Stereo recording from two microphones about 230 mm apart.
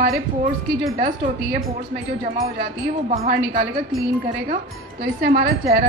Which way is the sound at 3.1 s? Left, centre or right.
Right.